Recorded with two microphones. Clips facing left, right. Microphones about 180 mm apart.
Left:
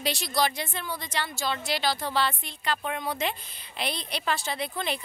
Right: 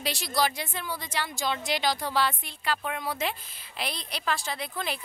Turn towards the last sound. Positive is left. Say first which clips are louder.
# left 2 dB
turn(degrees=0)  # may be behind; listen again after turning